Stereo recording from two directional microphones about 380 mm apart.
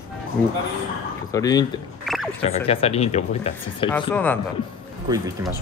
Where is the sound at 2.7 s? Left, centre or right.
Centre.